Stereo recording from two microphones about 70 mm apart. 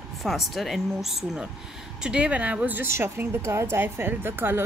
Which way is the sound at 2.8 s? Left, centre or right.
Right.